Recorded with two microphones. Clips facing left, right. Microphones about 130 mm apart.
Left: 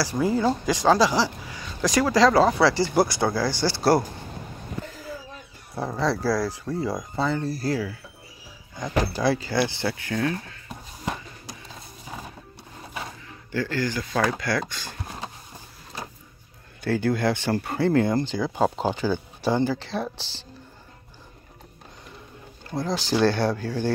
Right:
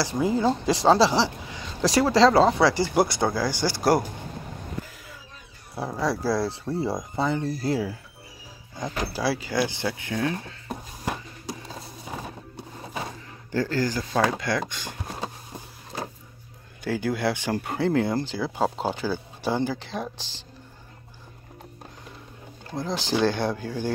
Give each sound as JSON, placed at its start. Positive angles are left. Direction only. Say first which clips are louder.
{"t": 0.0, "sound": "speech", "louder": "even", "side_deg": -20}
{"t": 4.8, "sound": "a sound", "louder": "left 8 dB", "side_deg": 0}
{"t": 5.8, "sound": "speech", "louder": "left 1 dB", "side_deg": -5}
{"t": 9.1, "sound": "speech", "louder": "left 2 dB", "side_deg": -10}
{"t": 13.5, "sound": "speech", "louder": "right 1 dB", "side_deg": -40}
{"t": 14.1, "sound": "speech", "louder": "even", "side_deg": -20}
{"t": 16.8, "sound": "speech", "louder": "left 2 dB", "side_deg": -10}
{"t": 23.0, "sound": "speech", "louder": "left 2 dB", "side_deg": -15}